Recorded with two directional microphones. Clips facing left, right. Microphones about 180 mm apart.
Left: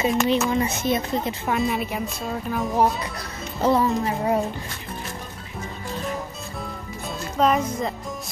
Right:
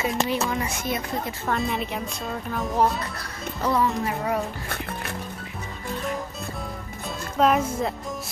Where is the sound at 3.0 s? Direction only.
20° left (ahead or behind).